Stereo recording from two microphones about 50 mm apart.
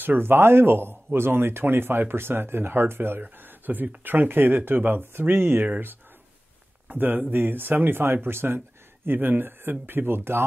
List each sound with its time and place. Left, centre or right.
0.0 s speech: right
6.9 s speech: right